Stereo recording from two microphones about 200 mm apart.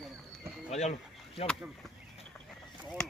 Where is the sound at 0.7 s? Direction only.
35° left (ahead or behind).